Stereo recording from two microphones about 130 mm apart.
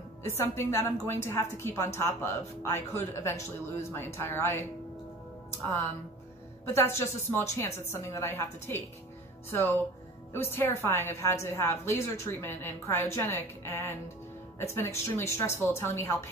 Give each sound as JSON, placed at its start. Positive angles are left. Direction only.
{"t": 0.2, "sound": "a woman's voice", "side_deg": 20}
{"t": 6.6, "sound": "a woman's voice", "side_deg": 20}